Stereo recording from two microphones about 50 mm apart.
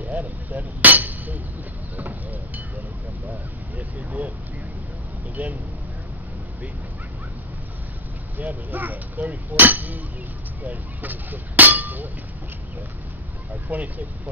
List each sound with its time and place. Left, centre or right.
0.0 s chink: right
2.0 s a sound: right
4.2 s a sound: right
5.3 s speech: right
8.4 s speech: right
13.7 s speech: right